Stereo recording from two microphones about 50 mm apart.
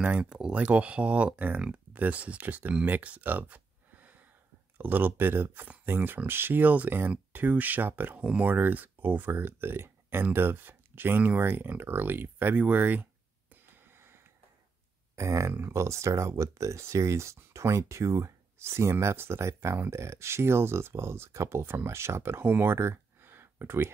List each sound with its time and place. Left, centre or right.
0.0 s speech: right
1.3 s speech: right
2.8 s a sound: right
4.7 s speech: right
13.5 s wheeze: right
15.1 s speech: right
22.5 s a sound: right